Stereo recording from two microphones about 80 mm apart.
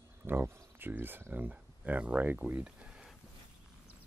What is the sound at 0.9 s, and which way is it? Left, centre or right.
Speech, right.